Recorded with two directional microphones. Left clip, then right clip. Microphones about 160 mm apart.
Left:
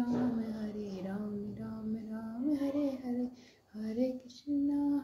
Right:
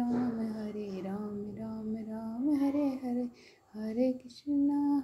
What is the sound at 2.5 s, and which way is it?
Female singing, 15° right (ahead or behind).